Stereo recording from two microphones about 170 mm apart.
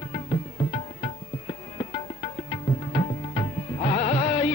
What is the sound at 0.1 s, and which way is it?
Music, 40° left (ahead or behind).